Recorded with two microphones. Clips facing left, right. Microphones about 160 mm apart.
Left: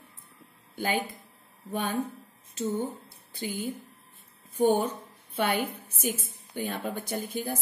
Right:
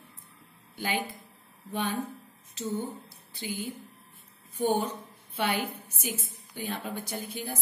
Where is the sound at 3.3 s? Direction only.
50° left (ahead or behind).